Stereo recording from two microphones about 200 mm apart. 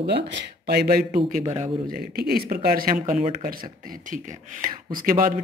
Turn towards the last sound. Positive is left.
turn(degrees=-45)  # may be behind; listen again after turning